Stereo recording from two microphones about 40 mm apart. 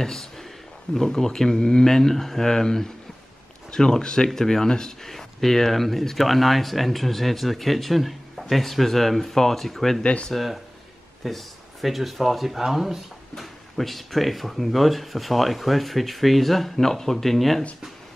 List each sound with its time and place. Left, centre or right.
0.0 s a sound: centre
0.9 s speech: centre
10.0 s speech: left
10.3 s speech: centre
13.3 s speech: centre